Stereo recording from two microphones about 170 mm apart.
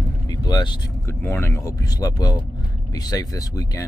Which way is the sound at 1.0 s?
15° left (ahead or behind).